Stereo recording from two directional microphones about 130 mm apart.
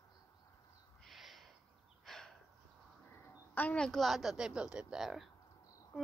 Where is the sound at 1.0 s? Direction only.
Centre (ahead or behind).